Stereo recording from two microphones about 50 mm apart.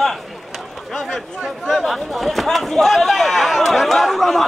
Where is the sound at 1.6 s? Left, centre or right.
Centre.